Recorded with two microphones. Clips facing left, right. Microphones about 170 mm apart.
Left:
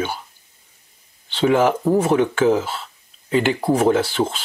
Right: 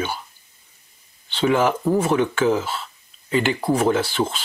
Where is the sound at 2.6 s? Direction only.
30° left (ahead or behind).